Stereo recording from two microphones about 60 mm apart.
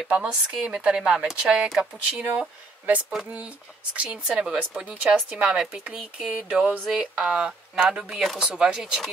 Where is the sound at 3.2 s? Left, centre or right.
Right; by 6.3 s centre.